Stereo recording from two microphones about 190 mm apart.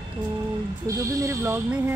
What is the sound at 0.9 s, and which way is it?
Speech, 15° right (ahead or behind).